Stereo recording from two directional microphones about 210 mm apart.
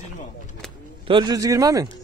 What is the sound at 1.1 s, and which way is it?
Speech, 20° right (ahead or behind).